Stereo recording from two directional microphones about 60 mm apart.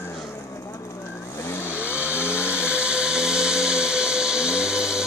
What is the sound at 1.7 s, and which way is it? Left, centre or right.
Power tool, right.